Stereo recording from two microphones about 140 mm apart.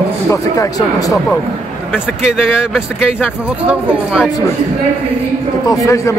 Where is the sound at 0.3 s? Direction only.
25° left (ahead or behind).